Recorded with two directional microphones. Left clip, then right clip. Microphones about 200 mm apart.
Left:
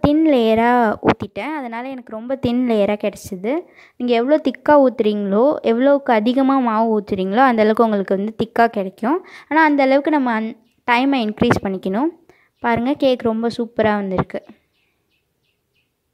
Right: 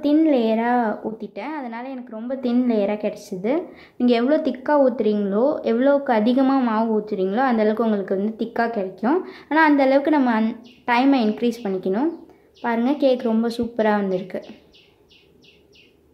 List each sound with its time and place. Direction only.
0.0 s a woman's voice: 40° left (ahead or behind)